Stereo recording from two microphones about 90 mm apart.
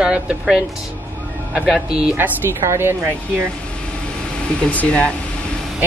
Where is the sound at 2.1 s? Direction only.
25° right (ahead or behind).